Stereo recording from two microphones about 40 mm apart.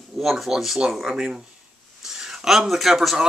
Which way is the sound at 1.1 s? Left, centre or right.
Centre.